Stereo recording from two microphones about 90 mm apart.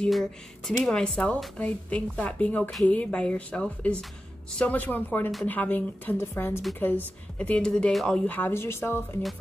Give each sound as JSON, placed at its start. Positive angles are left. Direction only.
{"t": 0.1, "sound": "speech", "side_deg": 5}
{"t": 7.3, "sound": "speech", "side_deg": 15}
{"t": 8.3, "sound": "speech", "side_deg": 20}